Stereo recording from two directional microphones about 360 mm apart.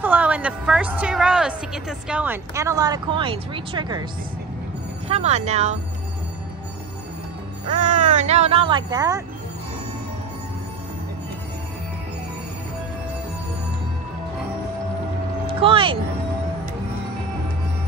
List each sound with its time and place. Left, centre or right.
0.0 s a woman's voice: centre
5.0 s speech: centre
7.7 s speech: right
15.4 s speech: centre